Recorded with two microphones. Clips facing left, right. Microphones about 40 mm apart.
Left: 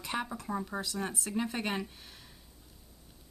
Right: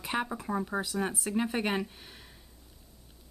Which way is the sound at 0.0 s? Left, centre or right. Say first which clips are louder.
Right 3 dB; centre.